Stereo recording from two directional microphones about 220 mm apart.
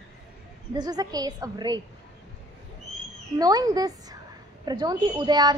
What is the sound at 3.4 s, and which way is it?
A woman's voice, 15° right (ahead or behind).